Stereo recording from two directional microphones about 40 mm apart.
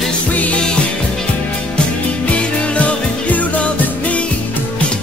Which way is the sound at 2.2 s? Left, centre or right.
Left.